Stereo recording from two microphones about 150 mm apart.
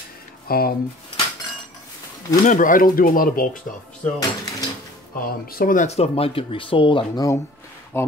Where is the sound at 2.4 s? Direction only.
60° left (ahead or behind).